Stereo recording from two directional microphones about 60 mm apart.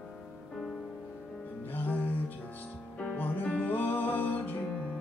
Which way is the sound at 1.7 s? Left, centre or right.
Left.